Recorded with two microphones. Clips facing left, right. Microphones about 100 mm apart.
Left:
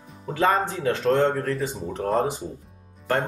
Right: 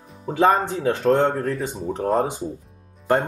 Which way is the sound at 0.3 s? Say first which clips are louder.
Right 4 dB; 20° right (ahead or behind).